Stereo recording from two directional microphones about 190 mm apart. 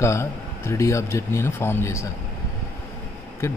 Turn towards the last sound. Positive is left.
turn(degrees=15)  # may be behind; listen again after turning